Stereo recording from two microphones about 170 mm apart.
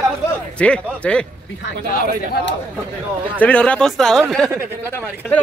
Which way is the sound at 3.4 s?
5° left (ahead or behind).